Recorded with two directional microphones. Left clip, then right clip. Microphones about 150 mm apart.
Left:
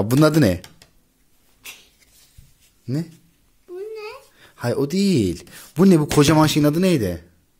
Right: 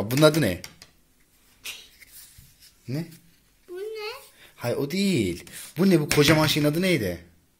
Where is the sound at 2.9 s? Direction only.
90° left.